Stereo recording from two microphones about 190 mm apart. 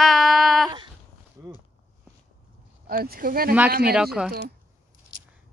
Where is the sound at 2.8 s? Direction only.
50° right (ahead or behind).